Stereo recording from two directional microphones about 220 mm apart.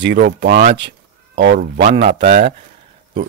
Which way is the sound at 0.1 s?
40° right (ahead or behind).